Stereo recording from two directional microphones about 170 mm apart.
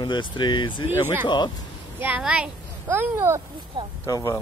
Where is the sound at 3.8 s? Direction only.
25° right (ahead or behind).